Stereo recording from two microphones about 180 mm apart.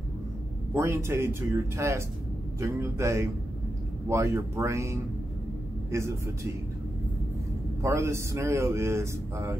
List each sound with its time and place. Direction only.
0.7 s speech: 15° right (ahead or behind)
7.8 s speech: 15° right (ahead or behind)